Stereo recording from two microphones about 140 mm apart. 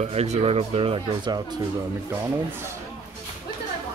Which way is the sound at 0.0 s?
50° right (ahead or behind).